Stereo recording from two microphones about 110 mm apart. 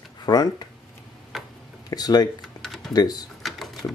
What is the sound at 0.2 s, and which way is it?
Speech, 40° left (ahead or behind).